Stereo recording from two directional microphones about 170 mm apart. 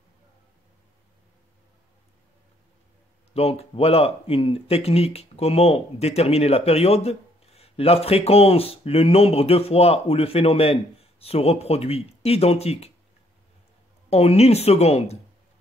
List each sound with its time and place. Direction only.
3.3 s speech: 35° left (ahead or behind)
14.1 s speech: 35° left (ahead or behind)